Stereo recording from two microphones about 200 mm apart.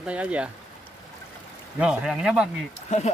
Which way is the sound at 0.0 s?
5° right (ahead or behind).